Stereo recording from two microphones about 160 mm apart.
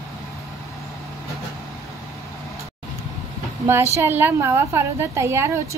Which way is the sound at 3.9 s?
15° right (ahead or behind).